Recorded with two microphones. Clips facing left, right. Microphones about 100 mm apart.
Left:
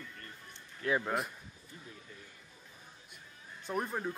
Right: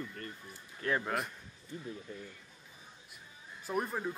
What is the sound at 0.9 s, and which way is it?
Speech, centre (ahead or behind).